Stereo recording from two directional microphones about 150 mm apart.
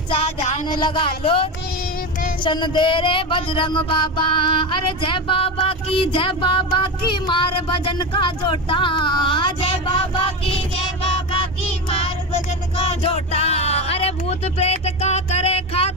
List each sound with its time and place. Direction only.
0.1 s music: 40° left (ahead or behind)
0.7 s music: 30° left (ahead or behind)
12.8 s a sound: 40° left (ahead or behind)